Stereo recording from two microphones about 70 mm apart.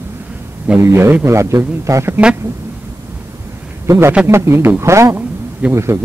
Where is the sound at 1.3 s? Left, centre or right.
Right.